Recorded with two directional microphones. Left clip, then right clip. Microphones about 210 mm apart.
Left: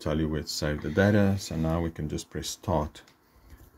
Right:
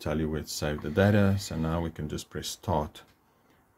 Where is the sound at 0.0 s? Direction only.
5° right (ahead or behind).